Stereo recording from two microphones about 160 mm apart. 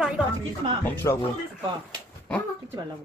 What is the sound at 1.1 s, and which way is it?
Speech, 15° left (ahead or behind).